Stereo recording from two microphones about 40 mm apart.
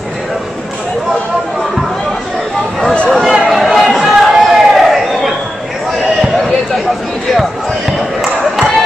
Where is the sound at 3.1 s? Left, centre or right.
Centre.